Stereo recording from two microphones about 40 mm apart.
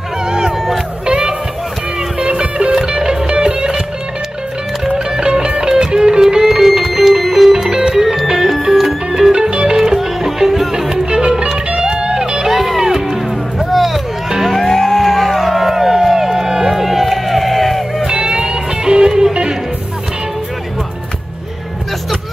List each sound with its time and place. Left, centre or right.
0.2 s music: centre
4.8 s music: right; by 7.5 s centre
7.7 s music: right
8.0 s music: centre
9.3 s music: right
11.1 s music: right
12.4 s music: centre
14.6 s music: centre
18.0 s music: right